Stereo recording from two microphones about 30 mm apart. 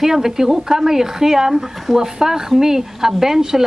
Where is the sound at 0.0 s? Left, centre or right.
Centre.